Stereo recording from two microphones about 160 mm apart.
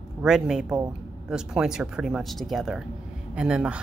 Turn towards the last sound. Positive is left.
turn(degrees=-5)  # may be behind; listen again after turning